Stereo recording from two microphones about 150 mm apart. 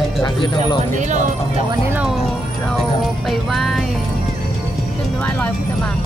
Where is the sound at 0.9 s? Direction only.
55° right (ahead or behind).